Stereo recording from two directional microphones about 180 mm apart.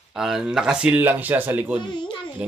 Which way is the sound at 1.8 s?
25° left (ahead or behind).